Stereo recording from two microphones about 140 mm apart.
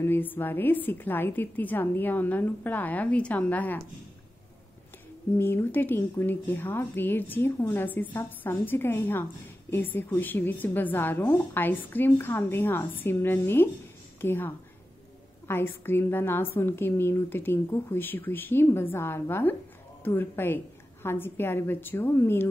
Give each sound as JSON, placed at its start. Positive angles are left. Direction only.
{"t": 0.0, "sound": "a woman's voice", "side_deg": 15}
{"t": 5.4, "sound": "a woman's voice", "side_deg": 15}